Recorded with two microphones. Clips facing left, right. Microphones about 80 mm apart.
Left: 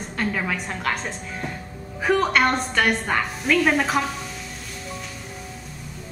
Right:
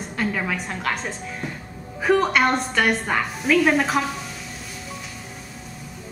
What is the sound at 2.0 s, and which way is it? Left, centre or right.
A woman's voice, centre.